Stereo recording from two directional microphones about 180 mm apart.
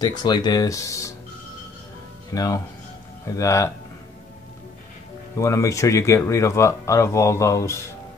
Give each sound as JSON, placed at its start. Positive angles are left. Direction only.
{"t": 0.0, "sound": "speech", "side_deg": 25}
{"t": 2.3, "sound": "speech", "side_deg": 20}
{"t": 5.4, "sound": "speech", "side_deg": 15}